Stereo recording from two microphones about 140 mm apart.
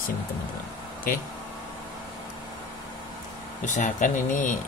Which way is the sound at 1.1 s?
90° left.